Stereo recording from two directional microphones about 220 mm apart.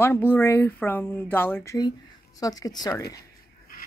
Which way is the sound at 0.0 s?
10° left (ahead or behind).